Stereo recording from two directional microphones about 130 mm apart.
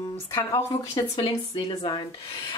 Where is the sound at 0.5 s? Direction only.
30° left (ahead or behind).